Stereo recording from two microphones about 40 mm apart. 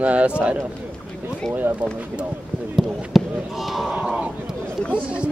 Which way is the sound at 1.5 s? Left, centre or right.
Right.